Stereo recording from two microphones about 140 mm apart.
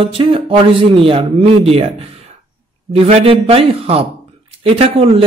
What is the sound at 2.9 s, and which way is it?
A man's voice, 45° right (ahead or behind).